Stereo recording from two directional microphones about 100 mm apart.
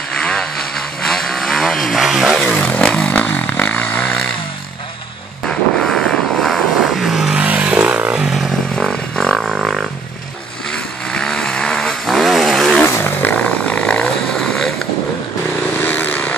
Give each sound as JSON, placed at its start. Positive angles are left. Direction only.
{"t": 0.2, "sound": "vehicle", "side_deg": 10}
{"t": 1.0, "sound": "chainsaw", "side_deg": 5}
{"t": 5.8, "sound": "vehicle", "side_deg": 5}
{"t": 7.4, "sound": "vehicle", "side_deg": -15}
{"t": 8.7, "sound": "vehicle", "side_deg": 5}
{"t": 11.1, "sound": "vehicle", "side_deg": 10}
{"t": 12.8, "sound": "motorcycle", "side_deg": 20}
{"t": 15.8, "sound": "vehicle", "side_deg": 15}